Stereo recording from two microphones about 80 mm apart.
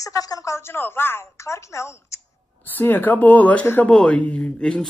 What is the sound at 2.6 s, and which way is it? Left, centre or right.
Speech, left.